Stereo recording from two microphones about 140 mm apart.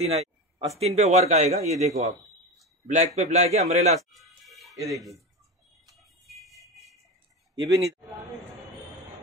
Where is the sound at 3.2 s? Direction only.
55° right (ahead or behind).